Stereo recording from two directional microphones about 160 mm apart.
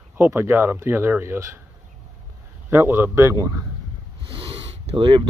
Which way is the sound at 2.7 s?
15° right (ahead or behind).